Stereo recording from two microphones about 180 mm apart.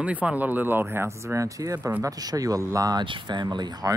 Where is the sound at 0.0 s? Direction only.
5° right (ahead or behind).